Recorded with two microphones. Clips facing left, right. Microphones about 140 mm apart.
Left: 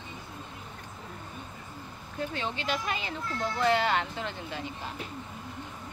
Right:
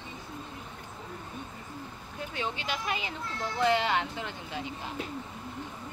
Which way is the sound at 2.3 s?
10° right (ahead or behind).